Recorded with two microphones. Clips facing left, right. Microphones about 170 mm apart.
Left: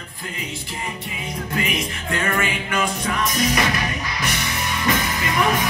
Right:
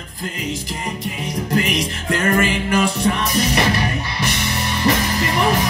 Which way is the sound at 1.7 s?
35° right (ahead or behind).